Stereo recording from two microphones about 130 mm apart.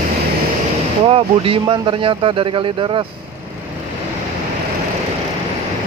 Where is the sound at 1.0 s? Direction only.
45° right (ahead or behind).